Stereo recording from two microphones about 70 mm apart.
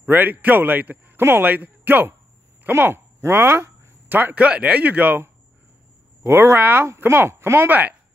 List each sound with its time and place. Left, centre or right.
0.0 s a man's voice: right
6.2 s speech: right